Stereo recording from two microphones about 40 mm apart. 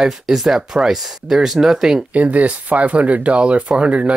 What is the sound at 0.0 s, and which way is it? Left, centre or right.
Speech, centre.